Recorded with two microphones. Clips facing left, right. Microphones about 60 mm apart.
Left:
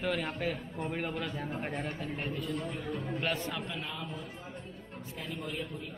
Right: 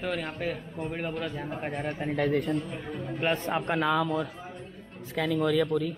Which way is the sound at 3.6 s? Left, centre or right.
Right.